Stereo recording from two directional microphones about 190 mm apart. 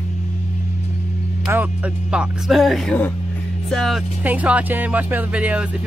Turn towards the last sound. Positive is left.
turn(degrees=-5)  # may be behind; listen again after turning